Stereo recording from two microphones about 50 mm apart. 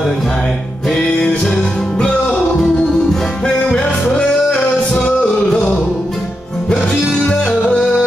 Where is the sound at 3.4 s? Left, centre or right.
Left.